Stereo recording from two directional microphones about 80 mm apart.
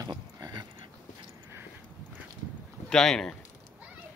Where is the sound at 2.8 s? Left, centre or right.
Centre.